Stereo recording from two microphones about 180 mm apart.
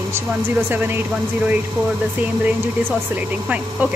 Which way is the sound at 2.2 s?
10° right (ahead or behind).